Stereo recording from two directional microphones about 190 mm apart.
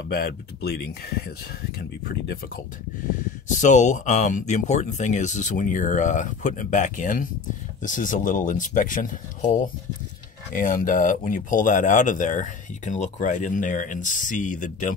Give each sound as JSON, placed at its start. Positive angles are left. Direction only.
{"t": 0.1, "sound": "speech", "side_deg": 55}
{"t": 3.4, "sound": "speech", "side_deg": 40}